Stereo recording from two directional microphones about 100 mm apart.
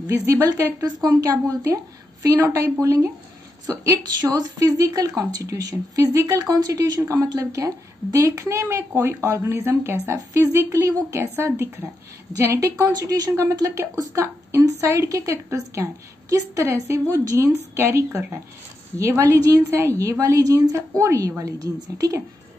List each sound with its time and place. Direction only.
0.0 s a woman's voice: 35° right (ahead or behind)
12.3 s a woman's voice: 35° right (ahead or behind)